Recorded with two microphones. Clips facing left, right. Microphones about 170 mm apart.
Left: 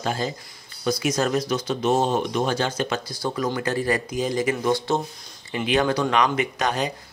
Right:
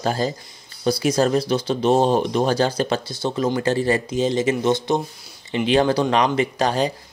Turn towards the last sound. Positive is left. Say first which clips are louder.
# right 4 dB
turn(degrees=-30)  # may be behind; listen again after turning